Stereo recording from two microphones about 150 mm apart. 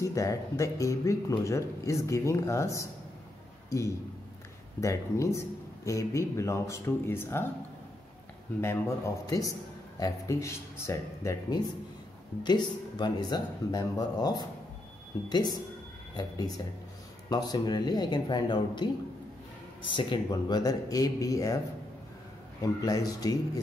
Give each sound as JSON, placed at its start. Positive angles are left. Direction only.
{"t": 0.0, "sound": "speech", "side_deg": 20}
{"t": 4.7, "sound": "speech", "side_deg": 20}
{"t": 8.5, "sound": "speech", "side_deg": 20}
{"t": 22.6, "sound": "speech", "side_deg": 25}